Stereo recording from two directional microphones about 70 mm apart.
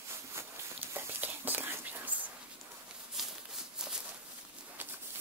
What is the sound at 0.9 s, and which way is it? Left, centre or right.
Whispering, right.